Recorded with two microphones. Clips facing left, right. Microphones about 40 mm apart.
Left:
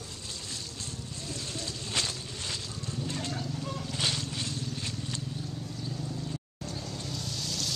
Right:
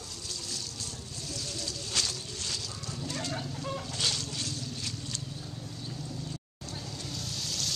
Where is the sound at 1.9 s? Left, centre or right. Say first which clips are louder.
Left 1 dB; left.